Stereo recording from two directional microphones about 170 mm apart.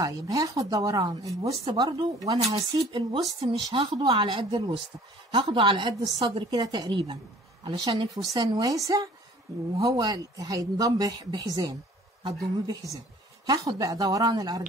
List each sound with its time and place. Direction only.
0.0 s a woman's voice: 20° right (ahead or behind)